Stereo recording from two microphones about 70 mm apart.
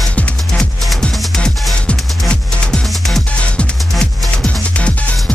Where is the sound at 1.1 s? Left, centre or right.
Centre.